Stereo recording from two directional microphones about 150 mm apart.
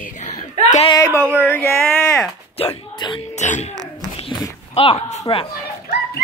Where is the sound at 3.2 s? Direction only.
50° left (ahead or behind).